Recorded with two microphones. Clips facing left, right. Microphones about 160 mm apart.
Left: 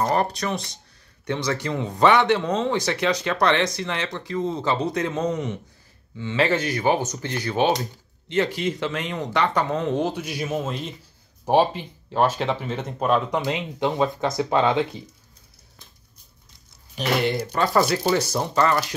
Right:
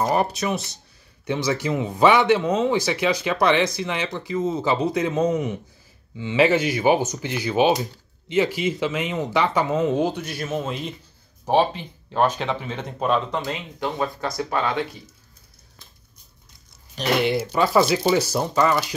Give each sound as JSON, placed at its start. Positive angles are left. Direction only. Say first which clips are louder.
{"t": 0.0, "sound": "speech", "louder": "right 1 dB", "side_deg": -10}
{"t": 10.2, "sound": "speech", "louder": "even", "side_deg": 10}
{"t": 12.1, "sound": "speech", "louder": "even", "side_deg": 5}
{"t": 13.5, "sound": "speech", "louder": "left 4 dB", "side_deg": 20}
{"t": 16.9, "sound": "speech", "louder": "right 2 dB", "side_deg": 0}